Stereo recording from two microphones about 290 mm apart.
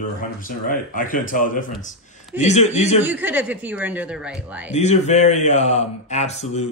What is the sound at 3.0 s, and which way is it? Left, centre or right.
Chopping, centre.